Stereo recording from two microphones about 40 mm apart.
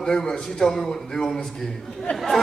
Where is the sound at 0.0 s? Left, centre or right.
Left.